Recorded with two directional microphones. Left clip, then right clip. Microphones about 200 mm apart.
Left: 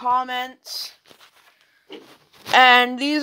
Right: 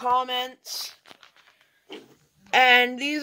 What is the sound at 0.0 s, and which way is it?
Speech, 20° left (ahead or behind).